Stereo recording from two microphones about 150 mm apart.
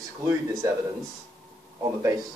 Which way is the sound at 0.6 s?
20° right (ahead or behind).